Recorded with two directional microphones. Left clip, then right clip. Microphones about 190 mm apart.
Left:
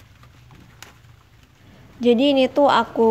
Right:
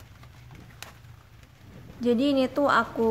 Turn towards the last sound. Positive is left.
turn(degrees=15)  # may be behind; listen again after turning